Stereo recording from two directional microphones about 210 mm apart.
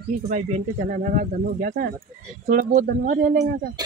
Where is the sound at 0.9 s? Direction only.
40° right (ahead or behind).